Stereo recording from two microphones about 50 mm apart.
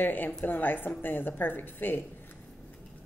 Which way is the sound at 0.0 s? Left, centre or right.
Left.